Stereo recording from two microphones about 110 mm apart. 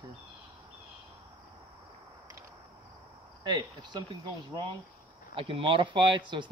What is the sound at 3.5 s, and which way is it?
Speech, 40° right (ahead or behind).